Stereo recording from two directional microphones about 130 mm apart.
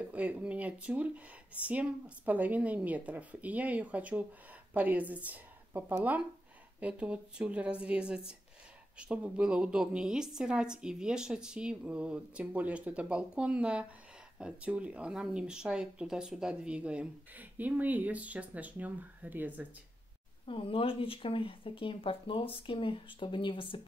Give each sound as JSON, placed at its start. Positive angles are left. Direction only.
{"t": 0.0, "sound": "speech", "side_deg": -10}
{"t": 20.4, "sound": "speech", "side_deg": 45}